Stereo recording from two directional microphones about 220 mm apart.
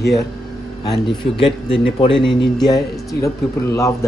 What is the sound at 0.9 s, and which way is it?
A man's voice, 25° left (ahead or behind).